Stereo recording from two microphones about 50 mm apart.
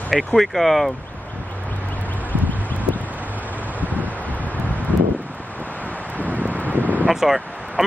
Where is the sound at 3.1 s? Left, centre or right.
Right.